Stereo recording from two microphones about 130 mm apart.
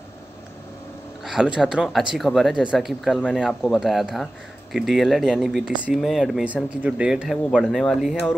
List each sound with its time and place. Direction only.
1.2 s speech: 5° right (ahead or behind)